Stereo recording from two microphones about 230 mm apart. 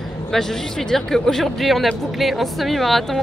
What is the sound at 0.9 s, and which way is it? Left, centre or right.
Speech, centre.